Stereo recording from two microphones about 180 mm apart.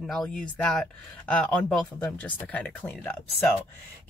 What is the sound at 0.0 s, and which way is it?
Speech, centre (ahead or behind).